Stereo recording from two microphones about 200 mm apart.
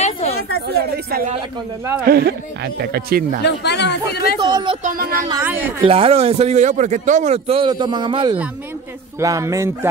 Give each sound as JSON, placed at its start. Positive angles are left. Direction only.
{"t": 0.0, "sound": "chatter", "side_deg": 30}
{"t": 0.7, "sound": "speech", "side_deg": -50}
{"t": 3.4, "sound": "speech", "side_deg": 60}
{"t": 4.4, "sound": "a man's voice", "side_deg": -25}
{"t": 4.8, "sound": "speech", "side_deg": -45}
{"t": 5.3, "sound": "speech", "side_deg": -10}
{"t": 5.8, "sound": "a man's voice", "side_deg": -30}